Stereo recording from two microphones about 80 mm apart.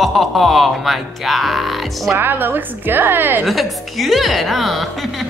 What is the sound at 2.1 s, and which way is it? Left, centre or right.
A woman's voice, right.